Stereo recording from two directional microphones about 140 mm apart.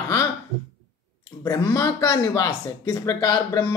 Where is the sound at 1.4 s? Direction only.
25° left (ahead or behind).